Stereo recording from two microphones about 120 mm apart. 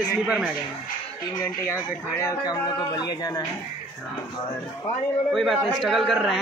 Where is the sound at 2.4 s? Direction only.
35° left (ahead or behind).